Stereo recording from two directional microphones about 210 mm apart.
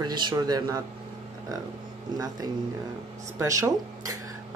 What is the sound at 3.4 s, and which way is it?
Speech, 15° right (ahead or behind).